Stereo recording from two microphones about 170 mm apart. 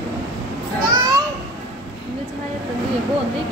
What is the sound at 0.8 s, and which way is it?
Children playing, 25° right (ahead or behind).